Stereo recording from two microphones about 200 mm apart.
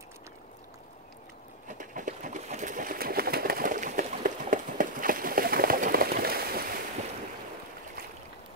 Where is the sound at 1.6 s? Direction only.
40° right (ahead or behind).